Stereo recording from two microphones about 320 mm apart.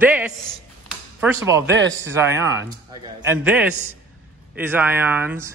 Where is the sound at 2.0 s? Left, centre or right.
Centre.